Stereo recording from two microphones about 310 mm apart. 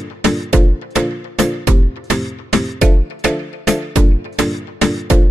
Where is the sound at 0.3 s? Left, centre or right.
Centre.